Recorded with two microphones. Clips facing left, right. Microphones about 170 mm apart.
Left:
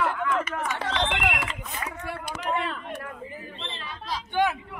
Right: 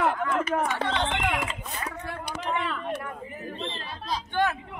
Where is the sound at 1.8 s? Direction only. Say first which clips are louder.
Left 1 dB; 10° left (ahead or behind).